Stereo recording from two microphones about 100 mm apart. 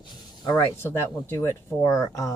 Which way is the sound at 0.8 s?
25° left (ahead or behind).